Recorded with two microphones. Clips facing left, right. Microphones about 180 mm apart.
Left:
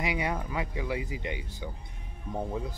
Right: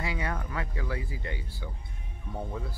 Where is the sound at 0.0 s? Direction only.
15° left (ahead or behind).